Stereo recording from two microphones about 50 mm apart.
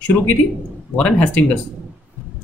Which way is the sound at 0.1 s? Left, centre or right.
Left.